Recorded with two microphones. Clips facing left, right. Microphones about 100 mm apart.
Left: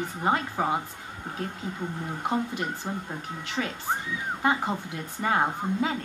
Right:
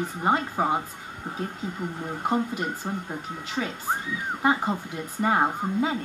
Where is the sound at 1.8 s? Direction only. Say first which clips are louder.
Right 2 dB; 10° right (ahead or behind).